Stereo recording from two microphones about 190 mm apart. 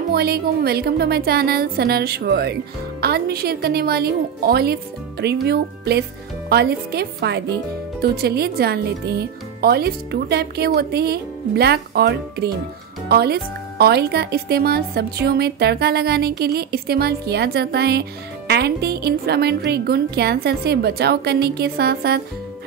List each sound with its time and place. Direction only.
0.1 s speech: 55° right (ahead or behind)